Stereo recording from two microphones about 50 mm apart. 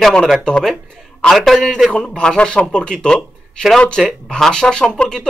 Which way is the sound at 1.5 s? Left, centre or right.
Centre.